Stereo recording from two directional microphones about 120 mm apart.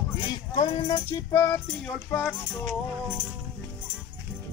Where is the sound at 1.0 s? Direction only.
20° left (ahead or behind).